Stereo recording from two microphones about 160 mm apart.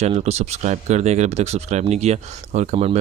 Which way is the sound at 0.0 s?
45° right (ahead or behind).